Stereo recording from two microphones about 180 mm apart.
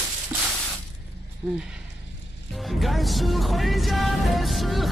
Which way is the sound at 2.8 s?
Centre (ahead or behind).